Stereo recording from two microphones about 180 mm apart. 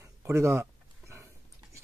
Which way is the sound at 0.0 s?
15° right (ahead or behind).